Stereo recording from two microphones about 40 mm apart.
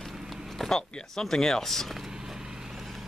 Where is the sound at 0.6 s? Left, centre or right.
Centre.